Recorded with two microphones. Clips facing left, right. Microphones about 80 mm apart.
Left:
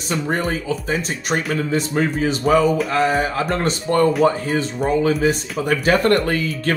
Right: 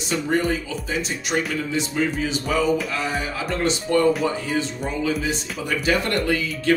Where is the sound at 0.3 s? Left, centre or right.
Left.